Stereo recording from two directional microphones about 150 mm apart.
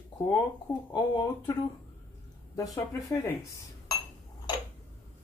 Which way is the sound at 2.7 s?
20° left (ahead or behind).